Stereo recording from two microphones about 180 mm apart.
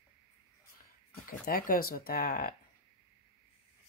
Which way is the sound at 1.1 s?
55° left (ahead or behind).